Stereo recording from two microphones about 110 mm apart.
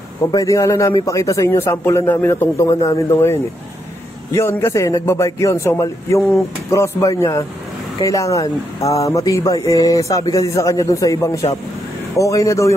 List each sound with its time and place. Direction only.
0.3 s speech: 30° left (ahead or behind)